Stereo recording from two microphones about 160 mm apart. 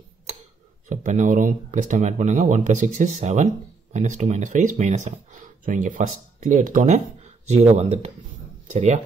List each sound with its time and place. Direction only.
0.8 s speech: 50° right (ahead or behind)
7.4 s speech: 40° right (ahead or behind)